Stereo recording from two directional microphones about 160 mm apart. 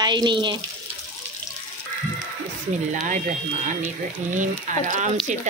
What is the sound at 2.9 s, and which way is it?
Speech, 55° right (ahead or behind).